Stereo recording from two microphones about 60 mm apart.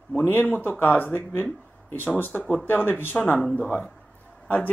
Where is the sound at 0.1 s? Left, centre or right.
Left.